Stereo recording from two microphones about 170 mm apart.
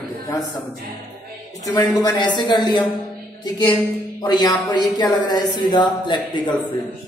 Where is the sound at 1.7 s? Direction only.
25° left (ahead or behind).